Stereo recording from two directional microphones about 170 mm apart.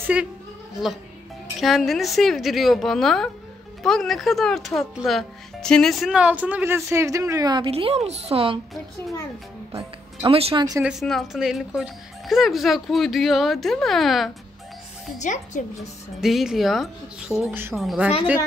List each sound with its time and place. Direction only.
0.0 s a woman's voice: 10° right (ahead or behind)
1.6 s speech: centre (ahead or behind); by 8.5 s 35° right (ahead or behind)
9.7 s speech: 35° right (ahead or behind)
10.8 s speech: centre (ahead or behind)
15.1 s speech: 45° left (ahead or behind)
16.2 s speech: centre (ahead or behind)